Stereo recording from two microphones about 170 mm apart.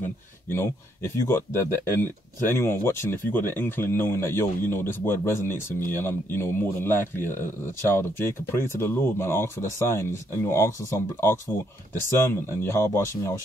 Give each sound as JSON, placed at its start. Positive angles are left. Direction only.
{"t": 0.0, "sound": "speech", "side_deg": 15}